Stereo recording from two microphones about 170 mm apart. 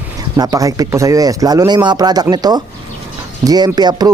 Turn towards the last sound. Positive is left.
turn(degrees=-25)  # may be behind; listen again after turning